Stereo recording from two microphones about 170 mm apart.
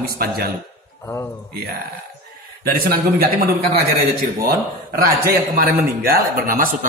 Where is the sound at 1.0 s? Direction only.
15° left (ahead or behind).